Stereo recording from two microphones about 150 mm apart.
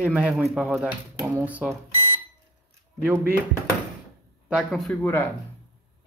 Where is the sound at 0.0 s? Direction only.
10° right (ahead or behind).